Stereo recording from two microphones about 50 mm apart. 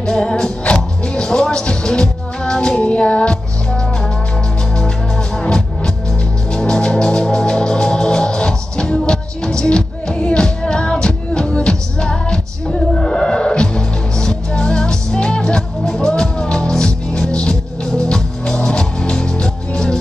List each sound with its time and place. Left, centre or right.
0.0 s music: centre
6.5 s music: centre